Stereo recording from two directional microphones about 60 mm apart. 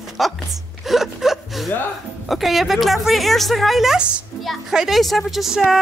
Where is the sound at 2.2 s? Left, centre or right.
Centre.